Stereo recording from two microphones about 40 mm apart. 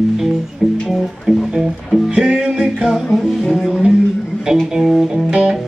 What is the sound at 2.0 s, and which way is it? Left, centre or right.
Music, centre.